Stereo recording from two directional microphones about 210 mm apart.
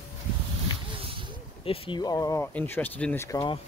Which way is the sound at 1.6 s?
25° left (ahead or behind).